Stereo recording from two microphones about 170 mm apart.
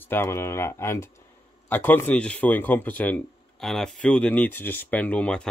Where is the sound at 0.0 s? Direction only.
15° left (ahead or behind).